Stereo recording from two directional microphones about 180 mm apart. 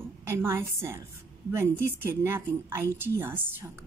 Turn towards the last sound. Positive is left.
turn(degrees=-10)  # may be behind; listen again after turning